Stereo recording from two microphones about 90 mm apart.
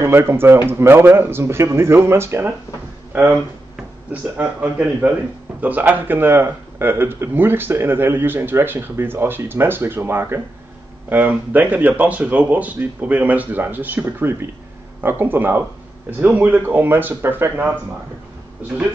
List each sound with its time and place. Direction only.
0.0 s speech: 25° right (ahead or behind)
3.1 s a sound: 20° right (ahead or behind)
4.1 s speech: 15° right (ahead or behind)